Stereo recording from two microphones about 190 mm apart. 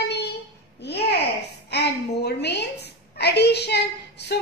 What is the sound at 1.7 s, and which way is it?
A woman's voice, 60° left (ahead or behind).